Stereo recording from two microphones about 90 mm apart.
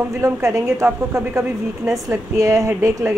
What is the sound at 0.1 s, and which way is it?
A woman's voice, 30° right (ahead or behind).